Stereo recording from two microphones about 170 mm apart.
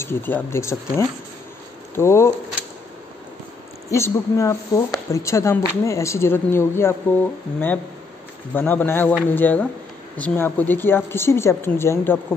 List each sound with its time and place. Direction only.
0.0 s speech: 10° left (ahead or behind)
3.9 s speech: 15° left (ahead or behind)